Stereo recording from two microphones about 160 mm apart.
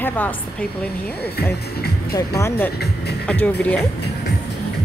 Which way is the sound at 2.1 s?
20° left (ahead or behind).